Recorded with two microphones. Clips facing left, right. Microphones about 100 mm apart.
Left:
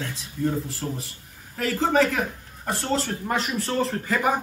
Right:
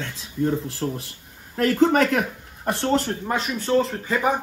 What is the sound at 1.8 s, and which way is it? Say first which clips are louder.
Speech: right 2 dB; 60° right (ahead or behind).